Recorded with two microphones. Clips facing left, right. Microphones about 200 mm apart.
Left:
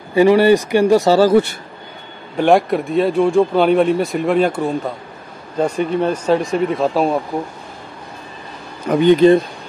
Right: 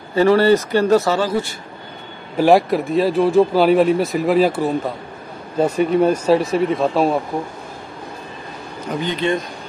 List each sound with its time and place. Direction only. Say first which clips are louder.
0.1 s speech: left 2 dB; 15° left (ahead or behind)
1.0 s speech: left 7 dB; 35° left (ahead or behind)
1.3 s speech: left 8 dB; 60° left (ahead or behind)
2.3 s speech: even; centre (ahead or behind)
9.2 s speech: left 9 dB; 40° left (ahead or behind)